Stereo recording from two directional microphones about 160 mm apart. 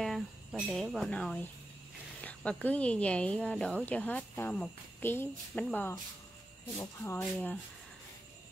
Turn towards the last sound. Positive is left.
turn(degrees=15)  # may be behind; listen again after turning